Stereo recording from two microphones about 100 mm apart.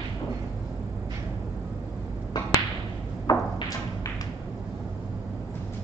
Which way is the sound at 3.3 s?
40° left (ahead or behind).